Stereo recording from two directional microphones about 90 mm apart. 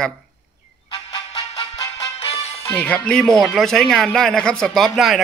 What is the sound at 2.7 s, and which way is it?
Speech, 15° left (ahead or behind).